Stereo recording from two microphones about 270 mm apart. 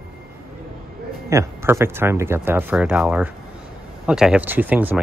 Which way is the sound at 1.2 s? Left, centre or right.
Centre.